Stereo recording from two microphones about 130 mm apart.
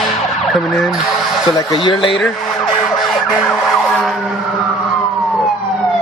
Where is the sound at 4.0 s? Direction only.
Centre (ahead or behind).